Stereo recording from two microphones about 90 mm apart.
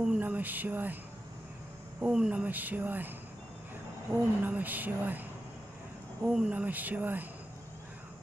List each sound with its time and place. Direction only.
0.2 s a sound: 20° right (ahead or behind)
2.0 s speech: 10° right (ahead or behind)
4.4 s speech: 20° right (ahead or behind)
6.2 s speech: 5° right (ahead or behind)
6.5 s speech: 20° right (ahead or behind)